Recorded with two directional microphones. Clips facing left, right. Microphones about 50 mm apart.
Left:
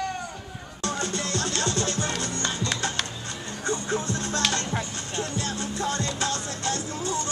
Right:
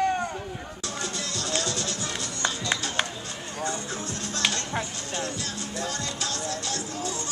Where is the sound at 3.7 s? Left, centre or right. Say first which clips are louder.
Left 8 dB; left.